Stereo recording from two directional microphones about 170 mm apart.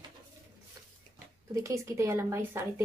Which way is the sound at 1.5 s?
20° right (ahead or behind).